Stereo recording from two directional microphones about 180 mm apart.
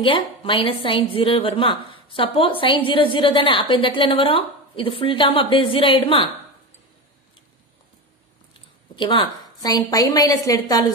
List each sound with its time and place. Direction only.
0.0 s a woman's voice: 30° left (ahead or behind)
8.9 s a woman's voice: 25° left (ahead or behind)